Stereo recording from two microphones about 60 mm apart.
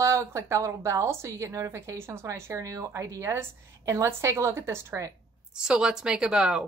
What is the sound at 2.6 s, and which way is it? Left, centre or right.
A woman's voice, right.